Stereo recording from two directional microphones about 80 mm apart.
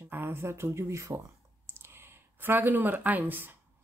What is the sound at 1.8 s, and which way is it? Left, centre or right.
Speech, right.